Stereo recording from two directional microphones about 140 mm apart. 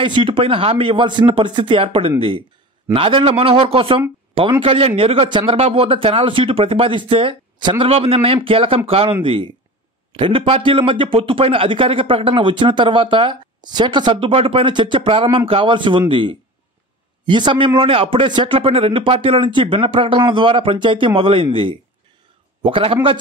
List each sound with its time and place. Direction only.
0.0 s a man's voice: 35° right (ahead or behind)